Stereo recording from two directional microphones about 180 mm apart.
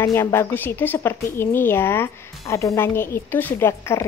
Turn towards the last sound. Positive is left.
turn(degrees=15)  # may be behind; listen again after turning